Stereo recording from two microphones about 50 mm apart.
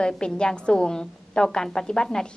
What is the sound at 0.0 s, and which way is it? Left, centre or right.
A woman's voice, centre.